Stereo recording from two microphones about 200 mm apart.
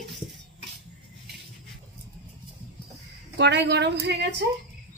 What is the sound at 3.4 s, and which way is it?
Speech, 60° right (ahead or behind).